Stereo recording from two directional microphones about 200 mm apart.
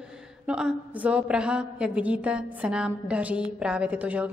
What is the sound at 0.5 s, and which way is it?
A woman's voice, 5° right (ahead or behind).